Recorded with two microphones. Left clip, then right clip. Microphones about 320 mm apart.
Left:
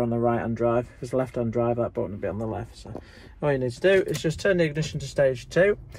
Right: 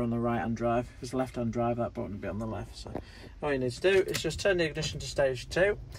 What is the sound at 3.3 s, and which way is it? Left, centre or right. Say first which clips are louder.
Speech: left 6 dB; left.